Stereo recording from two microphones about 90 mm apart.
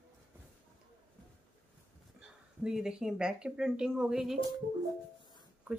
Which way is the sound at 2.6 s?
5° right (ahead or behind).